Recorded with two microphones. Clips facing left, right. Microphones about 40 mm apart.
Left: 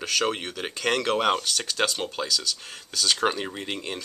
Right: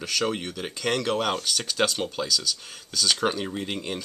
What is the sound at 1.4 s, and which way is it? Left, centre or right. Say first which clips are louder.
Speech: right 1 dB; centre.